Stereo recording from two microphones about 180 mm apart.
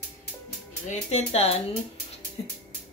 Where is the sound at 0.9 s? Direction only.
35° left (ahead or behind).